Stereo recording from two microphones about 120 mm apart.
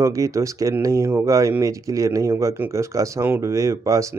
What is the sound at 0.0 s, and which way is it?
Speech, 25° right (ahead or behind).